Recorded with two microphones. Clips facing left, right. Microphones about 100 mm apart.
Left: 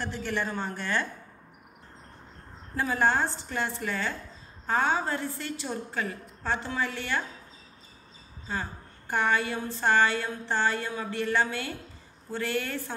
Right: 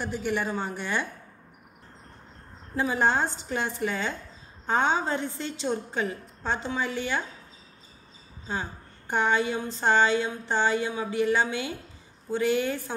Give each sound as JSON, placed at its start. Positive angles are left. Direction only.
{"t": 0.0, "sound": "a woman's voice", "side_deg": -15}
{"t": 2.7, "sound": "a woman's voice", "side_deg": -20}
{"t": 8.5, "sound": "a woman's voice", "side_deg": -20}